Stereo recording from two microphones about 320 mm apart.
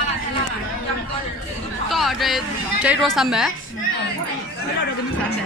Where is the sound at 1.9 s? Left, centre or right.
Centre.